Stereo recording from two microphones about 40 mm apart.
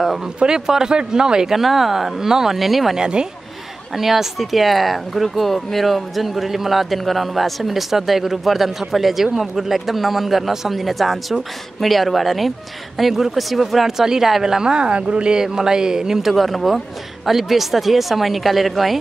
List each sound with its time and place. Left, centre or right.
0.0 s speech: centre
1.5 s speech: centre
3.0 s speech: right
3.9 s speech: centre
16.3 s speech: centre